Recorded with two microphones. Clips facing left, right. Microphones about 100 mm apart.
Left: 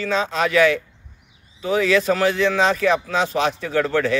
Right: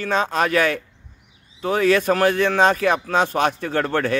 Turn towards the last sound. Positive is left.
turn(degrees=-50)  # may be behind; listen again after turning